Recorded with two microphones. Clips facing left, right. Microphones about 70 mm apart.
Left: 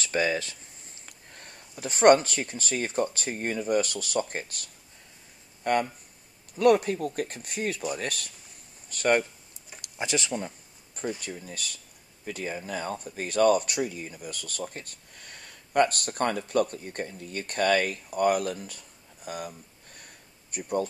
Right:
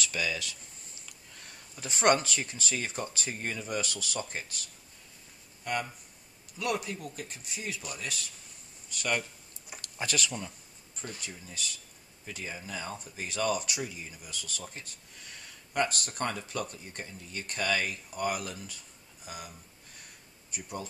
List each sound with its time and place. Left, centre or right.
0.0 s speech: left
1.0 s a sound: left
2.2 s speech: left
9.8 s speech: centre
11.1 s speech: left